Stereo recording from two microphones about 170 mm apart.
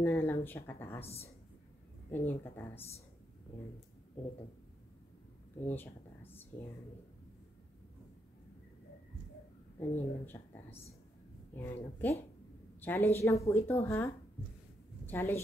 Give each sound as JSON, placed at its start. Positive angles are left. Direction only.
{"t": 0.0, "sound": "speech", "side_deg": 10}
{"t": 1.0, "sound": "a woman's voice", "side_deg": 35}
{"t": 2.0, "sound": "speech", "side_deg": 10}
{"t": 5.6, "sound": "speech", "side_deg": 10}
{"t": 9.8, "sound": "speech", "side_deg": 10}